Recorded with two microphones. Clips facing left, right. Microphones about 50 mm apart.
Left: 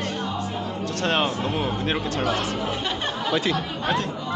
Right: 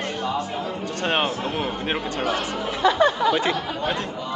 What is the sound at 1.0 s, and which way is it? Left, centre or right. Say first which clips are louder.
Speech: even; centre.